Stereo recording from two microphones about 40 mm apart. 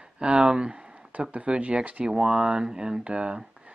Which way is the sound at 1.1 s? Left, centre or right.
Right.